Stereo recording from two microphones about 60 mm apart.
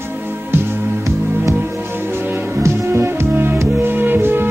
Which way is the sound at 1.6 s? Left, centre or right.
Right.